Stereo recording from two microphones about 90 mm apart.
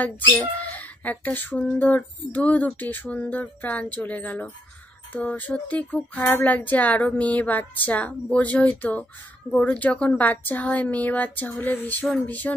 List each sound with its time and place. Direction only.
0.0 s speech: 15° left (ahead or behind)